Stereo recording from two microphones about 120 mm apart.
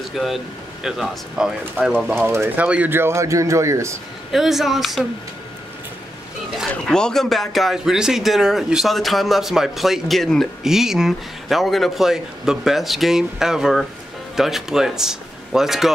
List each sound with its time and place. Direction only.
0.1 s speech: centre (ahead or behind)
2.0 s a man's voice: 15° right (ahead or behind)
4.3 s speech: centre (ahead or behind)
6.6 s speech: 5° left (ahead or behind)